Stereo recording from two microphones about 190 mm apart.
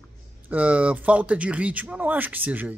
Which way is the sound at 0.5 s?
5° right (ahead or behind).